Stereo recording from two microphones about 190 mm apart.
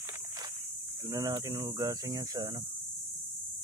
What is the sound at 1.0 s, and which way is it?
Speech, 20° right (ahead or behind).